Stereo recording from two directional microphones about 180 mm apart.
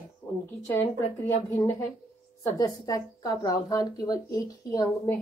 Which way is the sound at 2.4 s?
15° left (ahead or behind).